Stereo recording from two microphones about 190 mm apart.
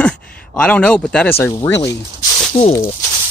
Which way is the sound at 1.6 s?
20° left (ahead or behind).